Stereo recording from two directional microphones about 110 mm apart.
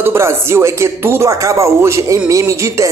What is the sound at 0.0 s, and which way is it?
Speech, 25° right (ahead or behind).